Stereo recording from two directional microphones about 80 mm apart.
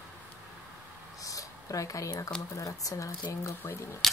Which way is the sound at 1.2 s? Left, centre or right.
Left.